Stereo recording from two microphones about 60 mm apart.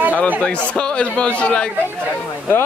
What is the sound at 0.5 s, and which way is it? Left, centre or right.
A man's voice, centre.